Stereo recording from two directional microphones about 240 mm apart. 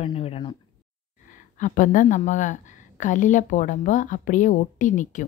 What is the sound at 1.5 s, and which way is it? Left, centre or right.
A woman's voice, left.